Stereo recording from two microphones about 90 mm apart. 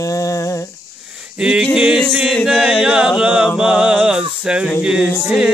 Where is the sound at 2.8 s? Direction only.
5° right (ahead or behind).